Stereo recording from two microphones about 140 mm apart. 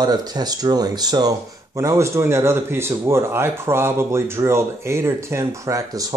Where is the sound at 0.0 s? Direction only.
30° right (ahead or behind).